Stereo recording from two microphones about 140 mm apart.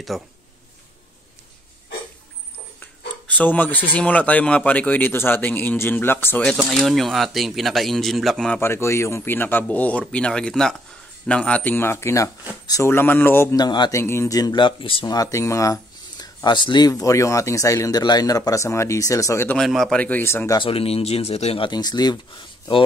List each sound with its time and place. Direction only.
0.1 s speech: centre (ahead or behind)
2.8 s speech: 10° left (ahead or behind)
6.5 s speech: centre (ahead or behind)
8.5 s speech: 20° left (ahead or behind)
13.6 s speech: 30° left (ahead or behind)
13.9 s speech: 20° left (ahead or behind); by 15.0 s 40° left (ahead or behind)
15.0 s speech: 25° left (ahead or behind)
19.5 s speech: centre (ahead or behind); by 20.5 s 15° left (ahead or behind)
20.5 s speech: 40° left (ahead or behind)
21.6 s speech: 30° left (ahead or behind)